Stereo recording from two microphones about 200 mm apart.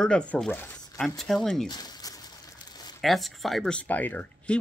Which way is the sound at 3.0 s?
Centre (ahead or behind).